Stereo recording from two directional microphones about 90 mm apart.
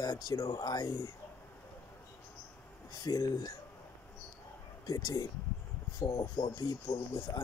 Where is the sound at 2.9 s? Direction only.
45° left (ahead or behind).